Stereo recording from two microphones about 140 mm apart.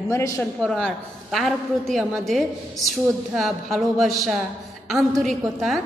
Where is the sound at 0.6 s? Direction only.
5° left (ahead or behind).